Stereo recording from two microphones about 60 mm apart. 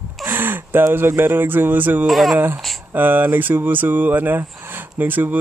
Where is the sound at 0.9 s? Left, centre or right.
Right.